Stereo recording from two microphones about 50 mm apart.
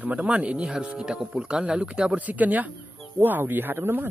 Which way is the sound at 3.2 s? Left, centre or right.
Right.